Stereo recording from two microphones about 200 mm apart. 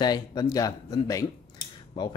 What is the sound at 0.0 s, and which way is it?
Speech, 20° left (ahead or behind).